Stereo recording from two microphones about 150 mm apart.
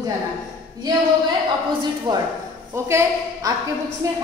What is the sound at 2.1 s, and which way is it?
Speech, 30° right (ahead or behind).